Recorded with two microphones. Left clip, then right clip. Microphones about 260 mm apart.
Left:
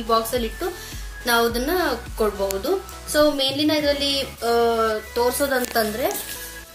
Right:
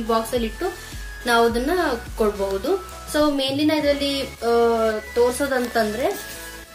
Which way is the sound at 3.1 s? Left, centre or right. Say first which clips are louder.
Left 2 dB; centre.